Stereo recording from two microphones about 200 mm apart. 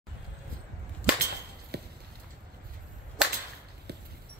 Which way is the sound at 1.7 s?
55° right (ahead or behind).